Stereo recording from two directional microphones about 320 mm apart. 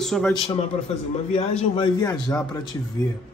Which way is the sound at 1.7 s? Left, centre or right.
Centre.